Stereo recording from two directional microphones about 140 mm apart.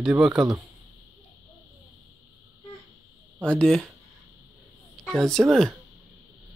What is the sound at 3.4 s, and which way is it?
Speech, 5° left (ahead or behind).